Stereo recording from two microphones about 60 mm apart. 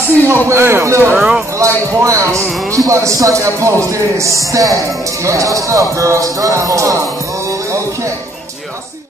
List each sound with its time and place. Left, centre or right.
0.3 s speech: right
1.1 s speech: centre
1.6 s speech: right